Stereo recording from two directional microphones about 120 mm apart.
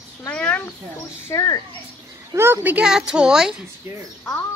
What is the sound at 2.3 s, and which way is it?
A child's voice, 20° right (ahead or behind).